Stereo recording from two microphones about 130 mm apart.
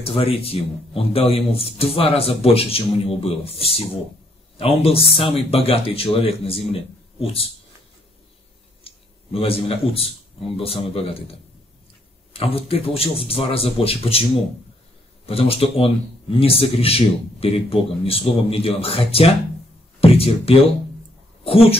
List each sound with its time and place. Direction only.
0.0 s speech: 50° left (ahead or behind)
8.8 s a sound: 50° left (ahead or behind)
10.6 s speech: 50° left (ahead or behind)
12.3 s speech: 45° left (ahead or behind)
15.2 s speech: 50° left (ahead or behind)